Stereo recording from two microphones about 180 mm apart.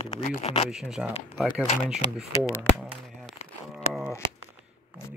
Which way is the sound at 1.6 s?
30° left (ahead or behind).